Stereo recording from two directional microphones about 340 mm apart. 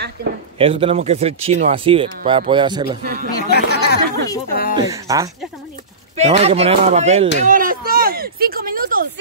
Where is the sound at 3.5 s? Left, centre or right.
Left.